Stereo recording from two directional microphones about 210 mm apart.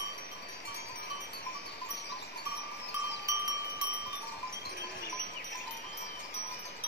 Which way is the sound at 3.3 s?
15° right (ahead or behind).